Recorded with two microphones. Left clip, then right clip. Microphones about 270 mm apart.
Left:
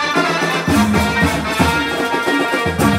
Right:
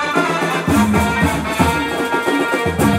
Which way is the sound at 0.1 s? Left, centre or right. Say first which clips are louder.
Left 1 dB; right.